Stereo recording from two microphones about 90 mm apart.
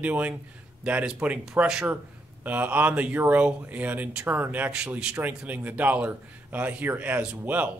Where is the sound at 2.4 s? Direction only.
20° right (ahead or behind).